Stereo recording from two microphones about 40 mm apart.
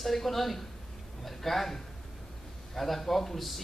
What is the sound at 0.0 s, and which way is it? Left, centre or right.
Speech, centre.